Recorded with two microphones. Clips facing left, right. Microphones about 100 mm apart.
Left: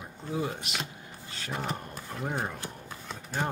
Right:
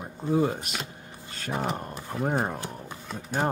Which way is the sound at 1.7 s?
45° right (ahead or behind).